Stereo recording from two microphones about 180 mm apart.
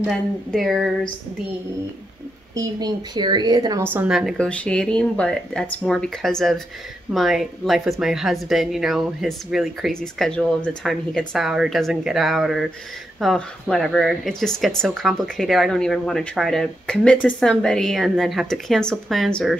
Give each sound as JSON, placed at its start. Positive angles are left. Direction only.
{"t": 0.0, "sound": "speech", "side_deg": 0}
{"t": 2.5, "sound": "a woman's voice", "side_deg": -20}
{"t": 3.8, "sound": "speech", "side_deg": -10}